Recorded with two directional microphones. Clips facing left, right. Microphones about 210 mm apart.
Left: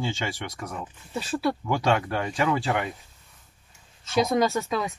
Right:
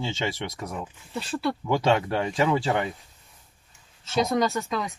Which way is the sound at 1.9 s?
25° right (ahead or behind).